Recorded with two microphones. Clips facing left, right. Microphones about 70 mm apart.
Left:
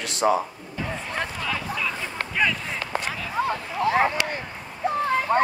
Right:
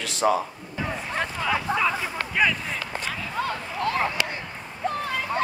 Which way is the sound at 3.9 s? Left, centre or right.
Left.